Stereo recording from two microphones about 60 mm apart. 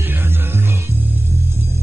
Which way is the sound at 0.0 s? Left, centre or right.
Right.